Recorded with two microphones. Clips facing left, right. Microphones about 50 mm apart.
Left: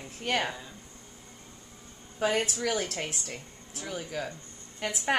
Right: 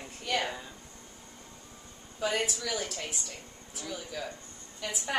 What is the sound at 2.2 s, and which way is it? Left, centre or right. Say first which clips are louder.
Speech: left 3 dB; left.